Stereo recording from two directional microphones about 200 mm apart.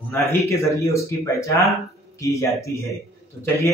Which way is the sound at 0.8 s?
15° left (ahead or behind).